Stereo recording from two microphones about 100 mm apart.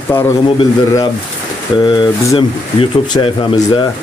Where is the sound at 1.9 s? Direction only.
50° left (ahead or behind).